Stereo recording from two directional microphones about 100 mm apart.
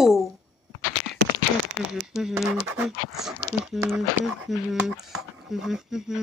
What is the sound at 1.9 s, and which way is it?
Speech, 5° right (ahead or behind).